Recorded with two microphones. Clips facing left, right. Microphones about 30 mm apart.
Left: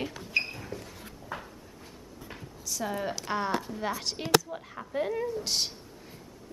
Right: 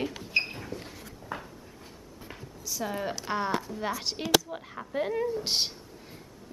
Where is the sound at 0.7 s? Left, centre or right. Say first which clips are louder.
Right 1 dB; right.